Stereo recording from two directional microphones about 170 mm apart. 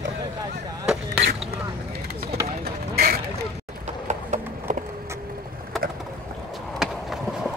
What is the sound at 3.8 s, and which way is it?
Horse, 45° right (ahead or behind).